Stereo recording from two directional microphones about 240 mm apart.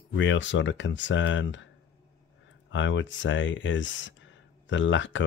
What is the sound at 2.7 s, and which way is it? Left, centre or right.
Speech, left.